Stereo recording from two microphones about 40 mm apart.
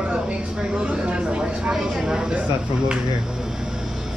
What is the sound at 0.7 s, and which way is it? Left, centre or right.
Speech, right.